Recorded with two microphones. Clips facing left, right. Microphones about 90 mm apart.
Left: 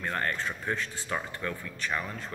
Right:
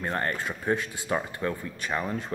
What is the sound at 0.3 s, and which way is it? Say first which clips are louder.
A man's voice: right 4 dB; 10° right (ahead or behind).